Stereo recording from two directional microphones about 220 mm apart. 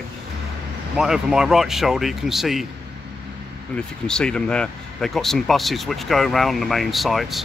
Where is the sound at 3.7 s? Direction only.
5° left (ahead or behind).